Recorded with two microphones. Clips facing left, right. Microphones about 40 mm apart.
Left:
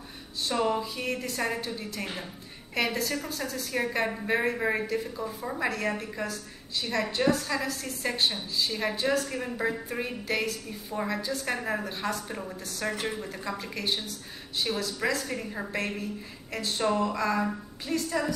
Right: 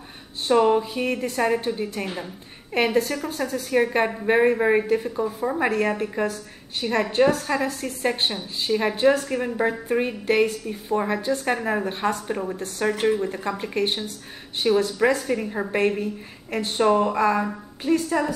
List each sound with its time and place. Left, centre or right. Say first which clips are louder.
0.4 s a woman's voice: right 9 dB; right
2.7 s a woman's voice: right 7 dB; right
16.0 s a woman's voice: right 7 dB; right